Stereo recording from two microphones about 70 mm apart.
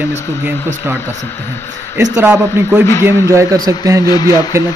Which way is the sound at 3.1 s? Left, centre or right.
Right.